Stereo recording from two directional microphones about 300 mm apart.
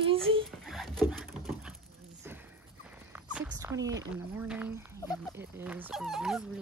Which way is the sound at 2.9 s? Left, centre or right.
Centre.